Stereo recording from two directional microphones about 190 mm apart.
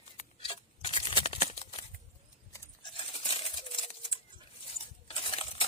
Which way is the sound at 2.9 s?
25° left (ahead or behind).